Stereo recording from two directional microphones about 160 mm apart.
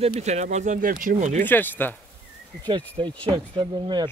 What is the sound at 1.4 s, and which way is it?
Speech, 10° left (ahead or behind).